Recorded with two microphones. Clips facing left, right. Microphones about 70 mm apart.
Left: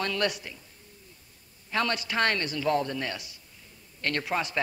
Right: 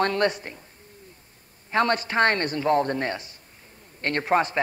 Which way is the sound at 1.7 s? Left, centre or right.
Right.